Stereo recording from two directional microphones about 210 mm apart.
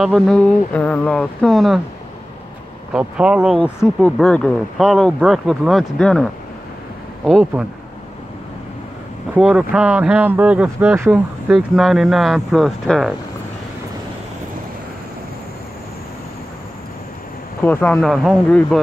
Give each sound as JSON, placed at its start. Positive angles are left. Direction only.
{"t": 0.0, "sound": "speech", "side_deg": 0}
{"t": 2.9, "sound": "speech", "side_deg": -5}
{"t": 7.2, "sound": "speech", "side_deg": 0}
{"t": 9.3, "sound": "speech", "side_deg": -5}
{"t": 17.6, "sound": "speech", "side_deg": 10}